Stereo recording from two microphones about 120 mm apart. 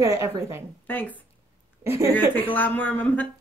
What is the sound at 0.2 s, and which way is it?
Laughter, 20° right (ahead or behind).